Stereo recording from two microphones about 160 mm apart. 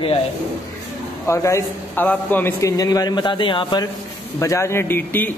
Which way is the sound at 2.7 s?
25° left (ahead or behind).